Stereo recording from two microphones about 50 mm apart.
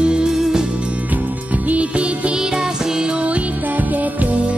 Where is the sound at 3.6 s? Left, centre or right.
Right.